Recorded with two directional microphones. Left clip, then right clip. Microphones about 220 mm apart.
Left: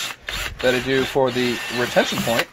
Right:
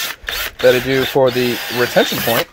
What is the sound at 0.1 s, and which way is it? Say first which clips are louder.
Wood: right 5 dB; 45° right (ahead or behind).